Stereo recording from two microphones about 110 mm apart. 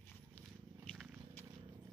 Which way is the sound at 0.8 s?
Centre (ahead or behind).